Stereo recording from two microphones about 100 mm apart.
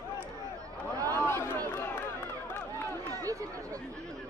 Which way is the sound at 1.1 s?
20° left (ahead or behind).